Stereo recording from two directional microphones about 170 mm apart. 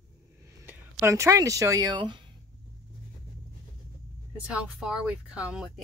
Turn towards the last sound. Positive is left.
turn(degrees=-5)  # may be behind; listen again after turning